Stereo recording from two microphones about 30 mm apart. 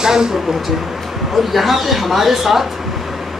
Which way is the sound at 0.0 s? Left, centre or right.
Right.